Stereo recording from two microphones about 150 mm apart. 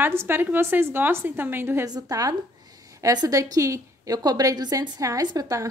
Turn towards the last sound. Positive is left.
turn(degrees=-25)  # may be behind; listen again after turning